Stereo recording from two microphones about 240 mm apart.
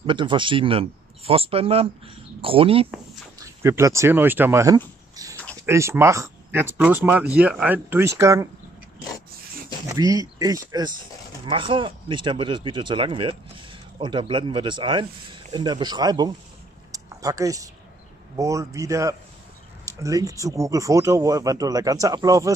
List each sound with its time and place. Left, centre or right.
0.0 s speech: centre
3.6 s speech: centre
9.8 s speech: centre
16.9 s a sound: centre
18.3 s speech: centre